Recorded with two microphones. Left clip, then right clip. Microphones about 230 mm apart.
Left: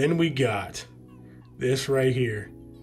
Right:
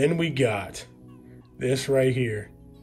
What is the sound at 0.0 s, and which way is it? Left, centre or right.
Speech, centre.